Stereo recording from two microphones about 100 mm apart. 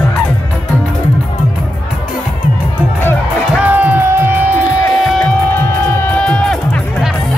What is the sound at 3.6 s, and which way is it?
Music, 15° right (ahead or behind).